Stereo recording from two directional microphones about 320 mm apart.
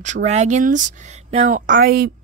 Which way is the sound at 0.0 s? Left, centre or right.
Right.